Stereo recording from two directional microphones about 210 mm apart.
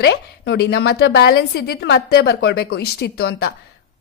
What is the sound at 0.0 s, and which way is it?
A woman's voice, 50° left (ahead or behind).